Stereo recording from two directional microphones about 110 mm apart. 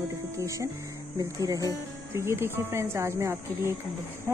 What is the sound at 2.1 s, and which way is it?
Speech, 25° right (ahead or behind).